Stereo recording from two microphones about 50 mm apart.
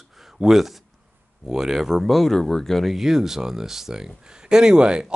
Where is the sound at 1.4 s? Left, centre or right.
Centre.